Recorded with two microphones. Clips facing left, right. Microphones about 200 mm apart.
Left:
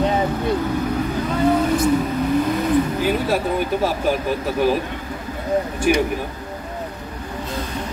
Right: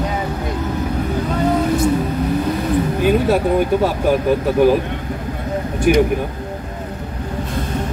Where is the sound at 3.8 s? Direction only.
55° right (ahead or behind).